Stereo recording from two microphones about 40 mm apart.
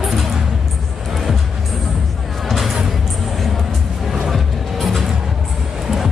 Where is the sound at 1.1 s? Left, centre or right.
Centre.